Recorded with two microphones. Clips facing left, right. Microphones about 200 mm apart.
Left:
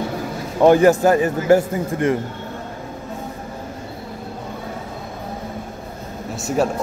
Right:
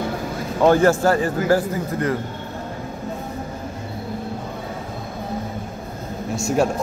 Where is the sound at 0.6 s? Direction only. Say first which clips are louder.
Left 3 dB; 15° left (ahead or behind).